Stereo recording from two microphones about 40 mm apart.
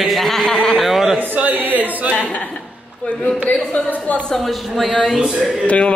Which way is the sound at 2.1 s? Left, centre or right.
Left.